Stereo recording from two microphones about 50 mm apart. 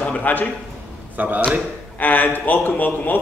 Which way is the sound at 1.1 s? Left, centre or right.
Right.